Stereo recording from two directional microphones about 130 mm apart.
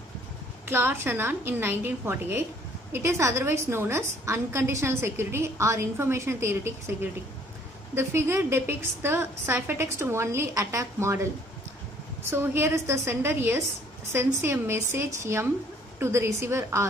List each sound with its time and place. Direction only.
0.7 s a woman's voice: 15° right (ahead or behind)
12.3 s a woman's voice: 20° right (ahead or behind)